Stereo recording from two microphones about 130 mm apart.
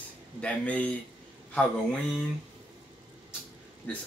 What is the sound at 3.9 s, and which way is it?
Speech, 10° left (ahead or behind).